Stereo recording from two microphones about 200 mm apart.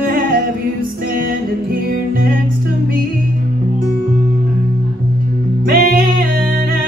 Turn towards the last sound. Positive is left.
turn(degrees=-45)  # may be behind; listen again after turning